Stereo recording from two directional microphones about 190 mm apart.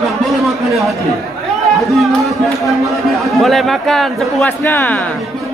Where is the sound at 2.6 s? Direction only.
Centre (ahead or behind).